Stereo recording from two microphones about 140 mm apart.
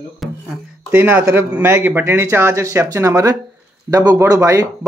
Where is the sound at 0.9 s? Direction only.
15° right (ahead or behind).